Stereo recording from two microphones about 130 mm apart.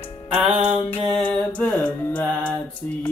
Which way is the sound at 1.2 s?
10° left (ahead or behind).